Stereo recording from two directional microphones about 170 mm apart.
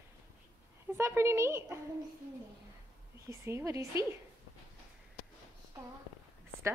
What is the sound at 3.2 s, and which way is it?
Speech, 15° right (ahead or behind).